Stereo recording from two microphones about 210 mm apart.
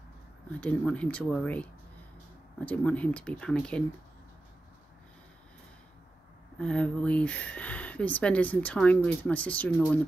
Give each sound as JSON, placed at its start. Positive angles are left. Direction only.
{"t": 0.6, "sound": "speech", "side_deg": 5}
{"t": 6.6, "sound": "speech", "side_deg": 5}